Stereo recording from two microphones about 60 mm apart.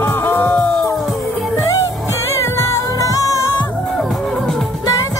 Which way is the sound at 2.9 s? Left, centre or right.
Left.